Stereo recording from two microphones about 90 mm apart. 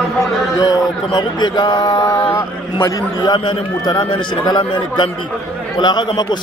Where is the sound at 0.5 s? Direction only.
45° left (ahead or behind).